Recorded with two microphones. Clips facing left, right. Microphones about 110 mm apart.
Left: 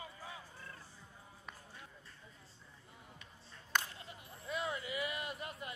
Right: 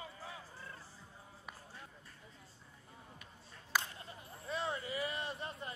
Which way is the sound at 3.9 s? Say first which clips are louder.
Right 1 dB; 35° right (ahead or behind).